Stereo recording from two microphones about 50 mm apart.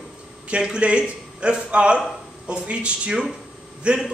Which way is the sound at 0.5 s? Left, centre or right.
Right.